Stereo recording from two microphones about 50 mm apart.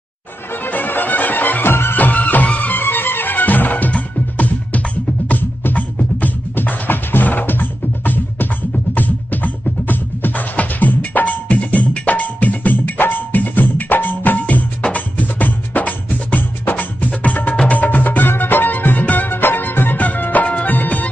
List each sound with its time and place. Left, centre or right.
0.7 s music: left
2.0 s music: left
2.8 s music: left
5.3 s music: left
20.6 s music of bollywood: left